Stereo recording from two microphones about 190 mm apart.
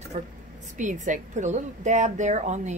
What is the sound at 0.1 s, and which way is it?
A woman's voice, 35° right (ahead or behind).